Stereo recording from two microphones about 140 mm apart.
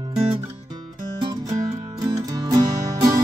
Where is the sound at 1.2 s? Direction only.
25° right (ahead or behind).